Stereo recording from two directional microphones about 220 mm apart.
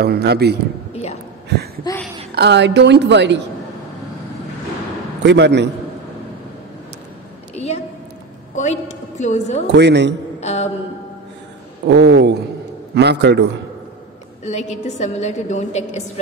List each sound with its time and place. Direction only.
0.0 s a woman's voice: 45° right (ahead or behind)
1.9 s a woman's voice: 15° left (ahead or behind)
2.3 s a woman's voice: 50° right (ahead or behind)
5.2 s a woman's voice: 50° right (ahead or behind)
7.5 s a sound: 30° left (ahead or behind)
9.2 s a woman's voice: 30° left (ahead or behind)
9.8 s a woman's voice: 50° right (ahead or behind)
10.4 s a sound: 30° left (ahead or behind)
11.8 s a woman's voice: 50° right (ahead or behind)
14.4 s a woman's voice: 30° left (ahead or behind)